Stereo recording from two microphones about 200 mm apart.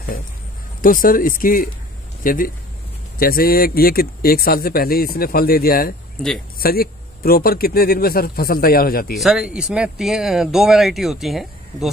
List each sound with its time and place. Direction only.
0.8 s speech: 45° left (ahead or behind)
9.1 s speech: centre (ahead or behind)